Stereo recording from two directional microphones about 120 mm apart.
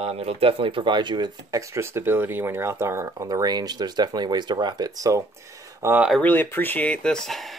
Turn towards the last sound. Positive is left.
turn(degrees=0)  # may be behind; listen again after turning